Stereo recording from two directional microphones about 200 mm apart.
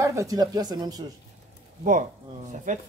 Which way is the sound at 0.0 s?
15° right (ahead or behind).